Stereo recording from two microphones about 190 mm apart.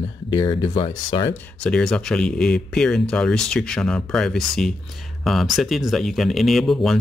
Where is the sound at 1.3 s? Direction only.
5° left (ahead or behind).